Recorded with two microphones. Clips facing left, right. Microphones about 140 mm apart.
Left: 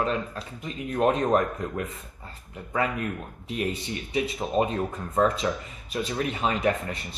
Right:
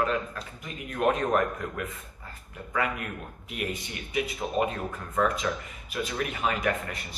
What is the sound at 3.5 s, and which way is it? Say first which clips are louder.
Speech: left 5 dB; 30° left (ahead or behind).